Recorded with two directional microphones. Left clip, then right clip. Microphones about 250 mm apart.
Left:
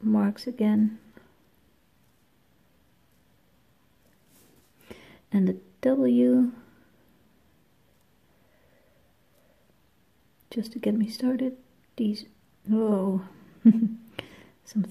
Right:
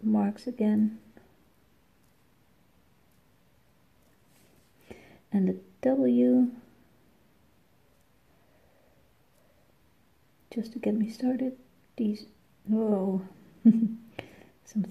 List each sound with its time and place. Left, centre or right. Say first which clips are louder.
0.1 s speech: left 2 dB; centre
4.8 s a sound: left 2 dB; centre
10.5 s speech: left 2 dB; centre